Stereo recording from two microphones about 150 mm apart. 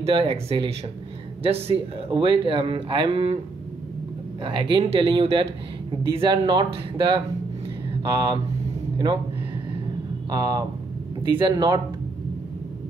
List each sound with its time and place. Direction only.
0.0 s speech: 40° right (ahead or behind)
4.5 s speech: 35° right (ahead or behind)
8.9 s speech: 30° right (ahead or behind)
10.3 s speech: 25° right (ahead or behind)